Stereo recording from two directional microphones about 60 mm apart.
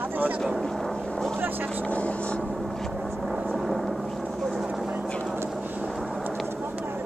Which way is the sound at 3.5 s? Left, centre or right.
Centre.